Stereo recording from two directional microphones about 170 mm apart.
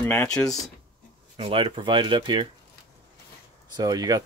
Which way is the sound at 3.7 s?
20° right (ahead or behind).